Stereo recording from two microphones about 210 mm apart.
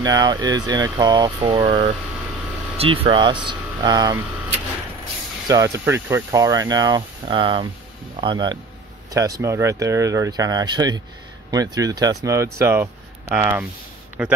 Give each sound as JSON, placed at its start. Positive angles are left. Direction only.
{"t": 0.0, "sound": "speech", "side_deg": -20}
{"t": 5.5, "sound": "a man's voice", "side_deg": -15}